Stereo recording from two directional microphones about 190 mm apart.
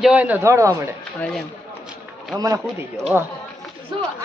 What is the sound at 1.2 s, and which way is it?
Speech, centre (ahead or behind).